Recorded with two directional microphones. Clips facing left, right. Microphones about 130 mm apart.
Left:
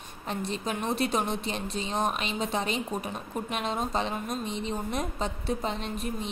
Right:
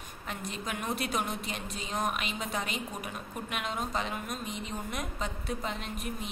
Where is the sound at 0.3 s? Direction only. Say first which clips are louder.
Left 6 dB; 30° left (ahead or behind).